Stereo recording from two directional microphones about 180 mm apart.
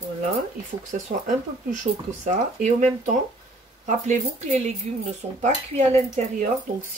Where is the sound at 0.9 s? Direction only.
45° right (ahead or behind).